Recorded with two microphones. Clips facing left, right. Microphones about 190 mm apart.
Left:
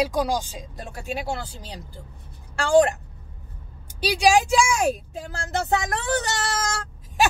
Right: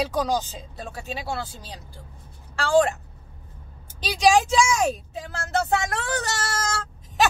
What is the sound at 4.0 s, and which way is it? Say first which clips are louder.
A woman's voice: even; 10° left (ahead or behind).